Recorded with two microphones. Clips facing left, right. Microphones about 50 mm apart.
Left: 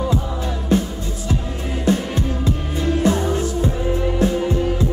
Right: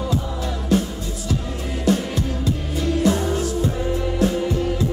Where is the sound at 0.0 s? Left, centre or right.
Left.